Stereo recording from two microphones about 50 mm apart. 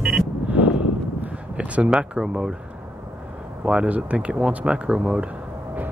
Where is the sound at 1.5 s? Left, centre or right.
Right.